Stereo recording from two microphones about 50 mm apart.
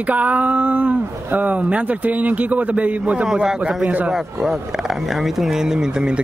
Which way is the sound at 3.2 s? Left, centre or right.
Centre.